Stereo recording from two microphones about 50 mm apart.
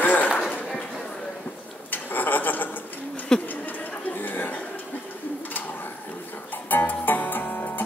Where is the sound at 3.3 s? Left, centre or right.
Centre.